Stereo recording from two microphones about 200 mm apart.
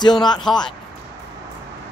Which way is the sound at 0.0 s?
20° left (ahead or behind).